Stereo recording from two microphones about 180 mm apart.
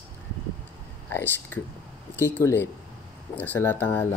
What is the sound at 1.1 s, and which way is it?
Speech, 10° left (ahead or behind).